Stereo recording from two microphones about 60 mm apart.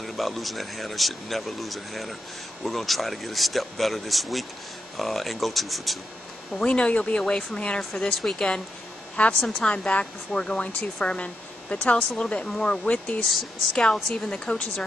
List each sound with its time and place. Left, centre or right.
0.0 s speech: centre
6.6 s speech: left
9.1 s speech: left
12.3 s speech: centre
12.9 s speech: left
13.9 s speech: centre
14.3 s speech: left